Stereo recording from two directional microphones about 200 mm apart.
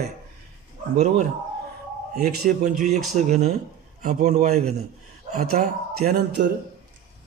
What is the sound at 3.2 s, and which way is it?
A man's voice, 35° right (ahead or behind).